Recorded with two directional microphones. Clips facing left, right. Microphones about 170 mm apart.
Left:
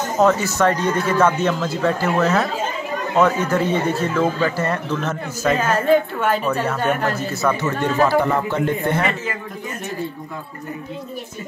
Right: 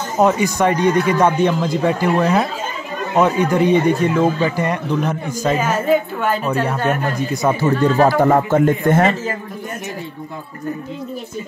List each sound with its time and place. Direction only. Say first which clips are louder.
0.2 s speech: right 2 dB; 15° right (ahead or behind)
7.6 s a man's voice: right 7 dB; 35° right (ahead or behind)